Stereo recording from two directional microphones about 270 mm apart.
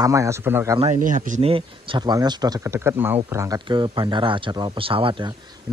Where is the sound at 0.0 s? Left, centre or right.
Centre.